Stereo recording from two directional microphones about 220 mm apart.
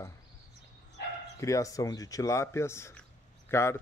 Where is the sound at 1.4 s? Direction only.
15° left (ahead or behind).